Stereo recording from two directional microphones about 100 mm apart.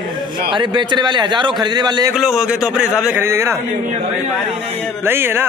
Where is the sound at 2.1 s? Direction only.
5° right (ahead or behind).